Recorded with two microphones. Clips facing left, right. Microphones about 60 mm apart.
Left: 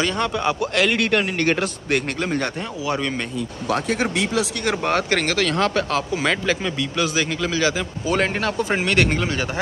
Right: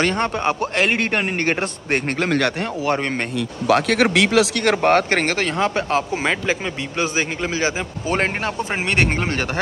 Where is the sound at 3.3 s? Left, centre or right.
Right.